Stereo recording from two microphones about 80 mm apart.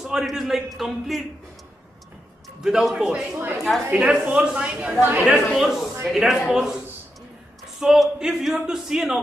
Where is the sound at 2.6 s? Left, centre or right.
Centre.